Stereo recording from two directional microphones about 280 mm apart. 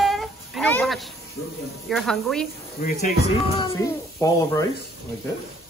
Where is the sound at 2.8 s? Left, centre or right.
Left.